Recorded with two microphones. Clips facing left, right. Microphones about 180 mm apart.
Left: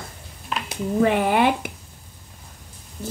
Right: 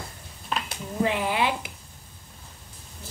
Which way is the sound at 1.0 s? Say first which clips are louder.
Left 6 dB; 55° left (ahead or behind).